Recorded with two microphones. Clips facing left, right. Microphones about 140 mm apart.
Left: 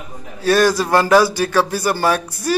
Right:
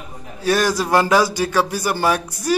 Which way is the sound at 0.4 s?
15° right (ahead or behind).